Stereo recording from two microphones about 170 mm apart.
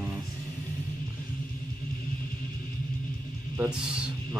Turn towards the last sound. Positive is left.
turn(degrees=-5)  # may be behind; listen again after turning